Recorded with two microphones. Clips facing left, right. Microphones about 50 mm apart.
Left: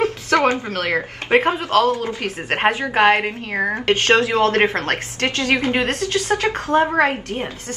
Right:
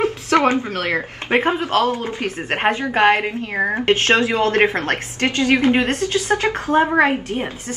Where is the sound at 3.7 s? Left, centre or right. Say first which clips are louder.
Even; centre.